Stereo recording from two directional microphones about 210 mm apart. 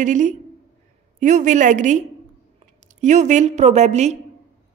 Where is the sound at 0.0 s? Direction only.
35° right (ahead or behind).